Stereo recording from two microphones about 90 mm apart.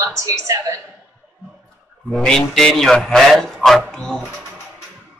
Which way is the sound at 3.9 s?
5° left (ahead or behind).